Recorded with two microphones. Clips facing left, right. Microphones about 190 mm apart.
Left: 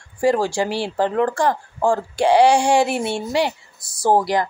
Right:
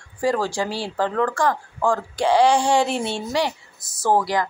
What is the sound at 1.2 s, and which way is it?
Speech, 30° left (ahead or behind).